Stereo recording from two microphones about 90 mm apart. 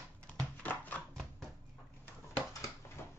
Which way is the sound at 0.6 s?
15° left (ahead or behind).